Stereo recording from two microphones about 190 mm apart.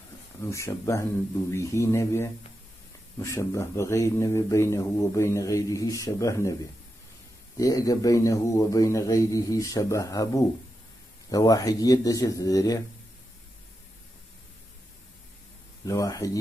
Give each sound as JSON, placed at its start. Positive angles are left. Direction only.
{"t": 0.4, "sound": "speech", "side_deg": 15}
{"t": 7.5, "sound": "speech", "side_deg": 20}
{"t": 15.9, "sound": "speech", "side_deg": 15}